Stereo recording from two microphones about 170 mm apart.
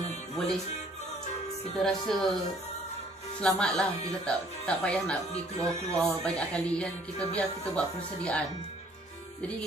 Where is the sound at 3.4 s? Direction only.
5° left (ahead or behind).